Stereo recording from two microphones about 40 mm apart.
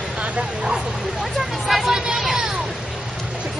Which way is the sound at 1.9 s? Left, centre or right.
Centre.